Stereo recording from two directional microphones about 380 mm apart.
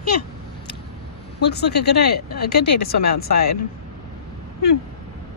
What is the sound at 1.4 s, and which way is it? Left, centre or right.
Speech, left.